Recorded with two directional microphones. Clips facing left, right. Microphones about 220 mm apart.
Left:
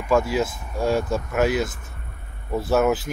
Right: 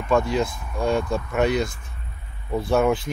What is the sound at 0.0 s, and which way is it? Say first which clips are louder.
Speech: even; 5° left (ahead or behind).